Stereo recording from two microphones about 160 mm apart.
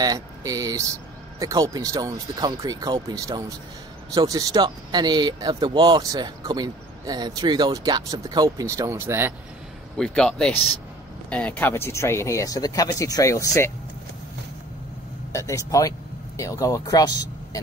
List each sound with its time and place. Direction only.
0.0 s speech: 25° right (ahead or behind)
9.9 s speech: 5° left (ahead or behind); by 13.7 s 20° left (ahead or behind)
15.3 s speech: 20° left (ahead or behind)